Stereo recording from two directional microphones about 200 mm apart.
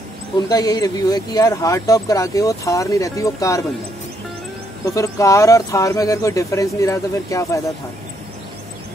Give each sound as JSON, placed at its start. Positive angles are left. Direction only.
{"t": 0.5, "sound": "speech", "side_deg": 20}
{"t": 4.9, "sound": "speech", "side_deg": 15}